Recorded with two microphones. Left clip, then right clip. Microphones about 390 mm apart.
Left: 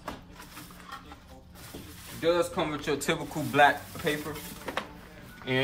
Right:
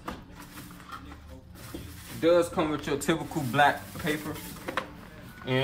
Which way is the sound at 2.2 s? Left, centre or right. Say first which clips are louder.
Right 3 dB; centre.